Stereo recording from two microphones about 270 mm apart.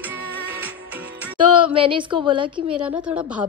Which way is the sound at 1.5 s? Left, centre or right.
Centre.